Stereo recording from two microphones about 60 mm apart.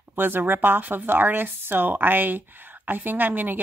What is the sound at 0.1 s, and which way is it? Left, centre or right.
Speech, right.